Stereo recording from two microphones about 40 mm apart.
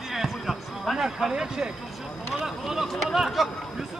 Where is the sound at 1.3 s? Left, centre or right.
Centre.